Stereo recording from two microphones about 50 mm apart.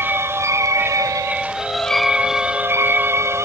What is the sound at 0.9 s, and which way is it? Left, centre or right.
Music, right.